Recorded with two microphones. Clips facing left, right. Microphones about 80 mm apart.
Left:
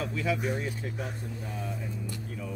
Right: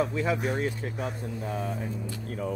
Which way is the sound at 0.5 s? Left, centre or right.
Right.